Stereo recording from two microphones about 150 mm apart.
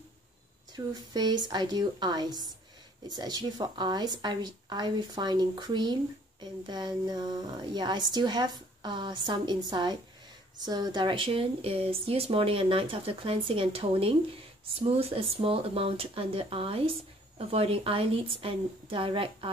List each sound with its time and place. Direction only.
0.7 s a woman's voice: 25° right (ahead or behind)